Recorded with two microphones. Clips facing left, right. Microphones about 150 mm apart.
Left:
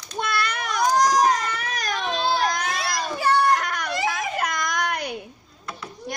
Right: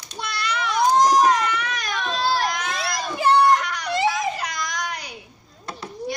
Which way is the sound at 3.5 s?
50° left (ahead or behind).